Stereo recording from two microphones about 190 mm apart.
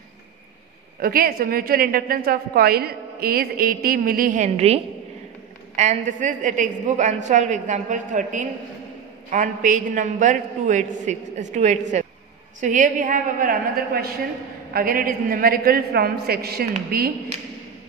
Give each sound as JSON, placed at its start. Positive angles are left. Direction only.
{"t": 0.9, "sound": "a woman's voice", "side_deg": -50}